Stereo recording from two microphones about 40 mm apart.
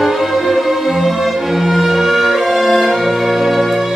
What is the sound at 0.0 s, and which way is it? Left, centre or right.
Music, centre.